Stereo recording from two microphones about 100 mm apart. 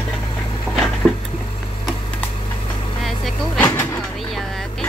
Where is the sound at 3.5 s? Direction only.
15° left (ahead or behind).